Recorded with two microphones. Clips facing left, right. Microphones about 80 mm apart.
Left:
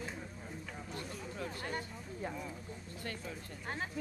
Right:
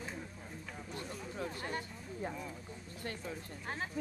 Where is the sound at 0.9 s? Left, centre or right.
Right.